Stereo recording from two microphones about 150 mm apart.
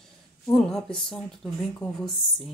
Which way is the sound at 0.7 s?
5° left (ahead or behind).